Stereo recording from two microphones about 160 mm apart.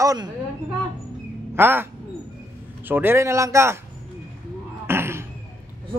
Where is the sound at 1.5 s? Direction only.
15° right (ahead or behind).